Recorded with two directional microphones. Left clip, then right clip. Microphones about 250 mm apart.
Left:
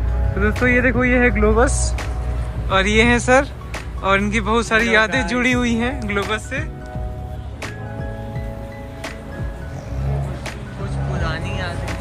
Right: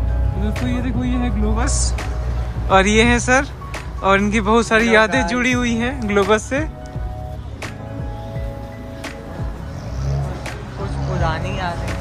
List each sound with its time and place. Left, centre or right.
0.4 s speech: centre
2.7 s speech: centre